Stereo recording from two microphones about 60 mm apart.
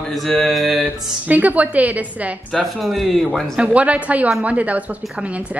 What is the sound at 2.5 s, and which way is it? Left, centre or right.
Speech, centre.